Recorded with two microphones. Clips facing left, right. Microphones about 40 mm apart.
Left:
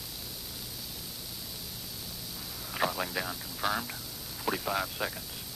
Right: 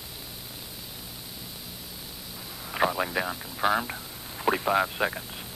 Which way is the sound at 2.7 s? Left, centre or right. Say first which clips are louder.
Right 5 dB; centre.